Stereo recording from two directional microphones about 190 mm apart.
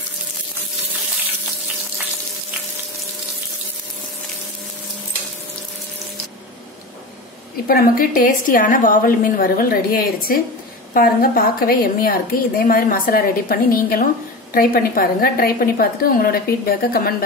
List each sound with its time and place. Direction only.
7.6 s a woman's voice: 50° left (ahead or behind)